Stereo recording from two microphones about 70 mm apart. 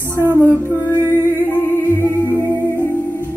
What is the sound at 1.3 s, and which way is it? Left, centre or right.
Music, left.